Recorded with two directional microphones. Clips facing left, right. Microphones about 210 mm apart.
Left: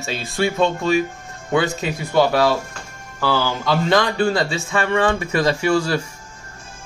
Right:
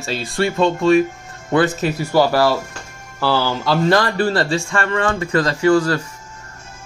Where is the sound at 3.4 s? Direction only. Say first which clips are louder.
Right 2 dB; 5° right (ahead or behind).